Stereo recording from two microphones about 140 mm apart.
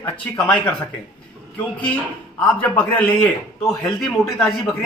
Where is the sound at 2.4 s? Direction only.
10° left (ahead or behind).